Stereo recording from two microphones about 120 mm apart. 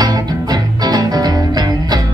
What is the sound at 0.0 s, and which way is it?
Music, 35° right (ahead or behind).